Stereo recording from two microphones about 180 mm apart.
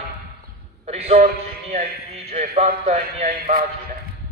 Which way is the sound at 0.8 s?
35° right (ahead or behind).